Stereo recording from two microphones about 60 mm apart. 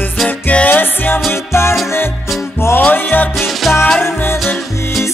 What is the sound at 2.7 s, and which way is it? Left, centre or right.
Music, left.